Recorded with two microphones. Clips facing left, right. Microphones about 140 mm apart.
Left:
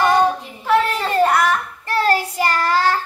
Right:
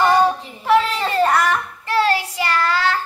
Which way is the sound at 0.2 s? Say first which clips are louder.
Even; centre (ahead or behind).